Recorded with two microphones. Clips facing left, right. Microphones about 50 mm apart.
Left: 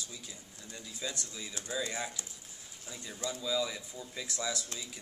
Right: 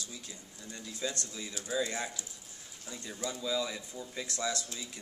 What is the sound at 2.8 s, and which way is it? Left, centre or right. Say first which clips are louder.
Speech: right 1 dB; centre.